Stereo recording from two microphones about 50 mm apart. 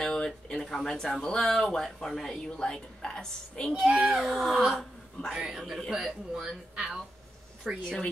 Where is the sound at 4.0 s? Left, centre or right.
Centre.